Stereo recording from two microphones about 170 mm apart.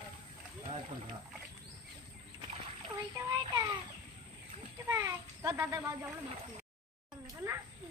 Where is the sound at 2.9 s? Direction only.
20° right (ahead or behind).